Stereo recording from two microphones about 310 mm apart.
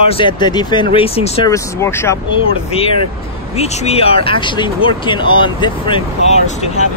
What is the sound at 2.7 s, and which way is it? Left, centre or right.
Speech, centre.